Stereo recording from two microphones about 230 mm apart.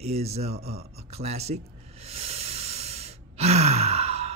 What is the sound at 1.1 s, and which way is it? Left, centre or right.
Hiss, right.